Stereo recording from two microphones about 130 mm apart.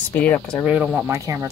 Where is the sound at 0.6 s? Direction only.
5° right (ahead or behind).